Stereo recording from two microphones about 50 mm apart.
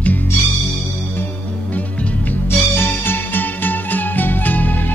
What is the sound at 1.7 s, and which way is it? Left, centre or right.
Music, left.